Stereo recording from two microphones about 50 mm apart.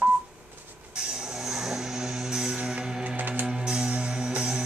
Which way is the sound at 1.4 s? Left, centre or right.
Centre.